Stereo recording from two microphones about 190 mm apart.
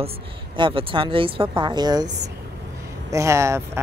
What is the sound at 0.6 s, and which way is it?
Speech, 25° right (ahead or behind).